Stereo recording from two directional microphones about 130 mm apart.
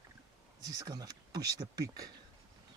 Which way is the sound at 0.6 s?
30° right (ahead or behind).